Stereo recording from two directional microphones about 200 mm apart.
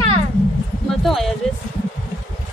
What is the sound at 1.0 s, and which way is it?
Speech, centre (ahead or behind).